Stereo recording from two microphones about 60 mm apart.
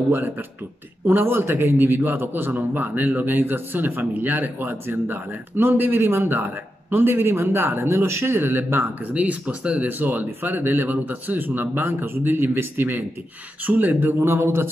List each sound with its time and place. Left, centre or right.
1.0 s a man's voice: right
8.4 s a man's voice: right
9.1 s a man's voice: right